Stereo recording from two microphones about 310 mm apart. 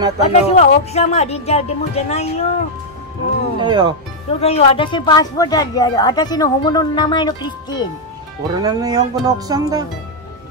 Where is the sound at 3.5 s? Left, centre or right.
Centre.